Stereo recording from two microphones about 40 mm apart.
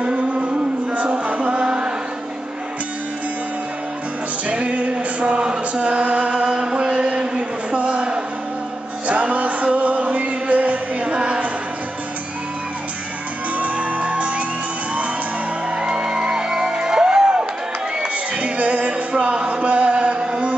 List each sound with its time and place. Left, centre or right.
0.0 s music: right
4.5 s music: right
13.6 s music: right
15.7 s music: right